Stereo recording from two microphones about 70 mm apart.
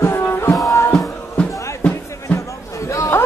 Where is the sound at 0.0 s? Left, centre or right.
Left.